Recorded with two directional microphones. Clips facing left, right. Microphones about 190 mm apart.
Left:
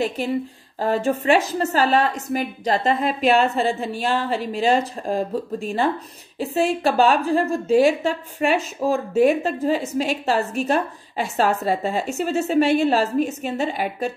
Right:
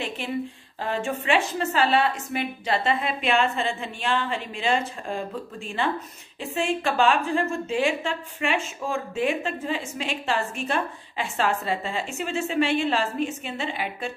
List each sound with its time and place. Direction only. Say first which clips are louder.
0.2 s a woman's voice: left 5 dB; 40° left (ahead or behind)